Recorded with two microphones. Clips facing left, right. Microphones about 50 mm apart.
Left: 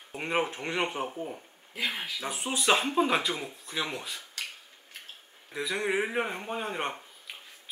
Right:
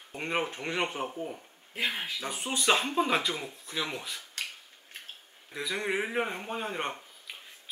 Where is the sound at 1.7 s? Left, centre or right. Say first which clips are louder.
Right 1 dB; right.